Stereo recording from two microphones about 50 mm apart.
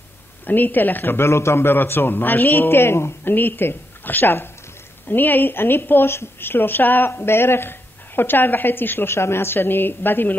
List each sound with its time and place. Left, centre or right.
0.5 s a man's voice: left
3.3 s a man's voice: left